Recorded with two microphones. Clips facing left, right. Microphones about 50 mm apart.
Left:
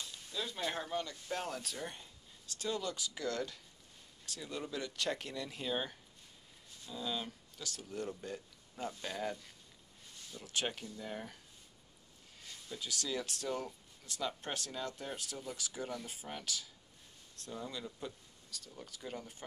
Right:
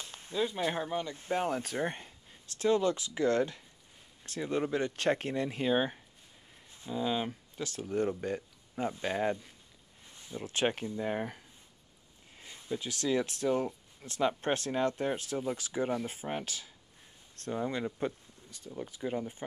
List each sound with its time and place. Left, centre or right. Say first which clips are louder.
0.0 s speech: right 9 dB; right
10.1 s a sound: right 9 dB; right
10.4 s speech: right 8 dB; right
12.4 s speech: right 8 dB; right
14.0 s speech: right 10 dB; right
18.5 s speech: right 8 dB; right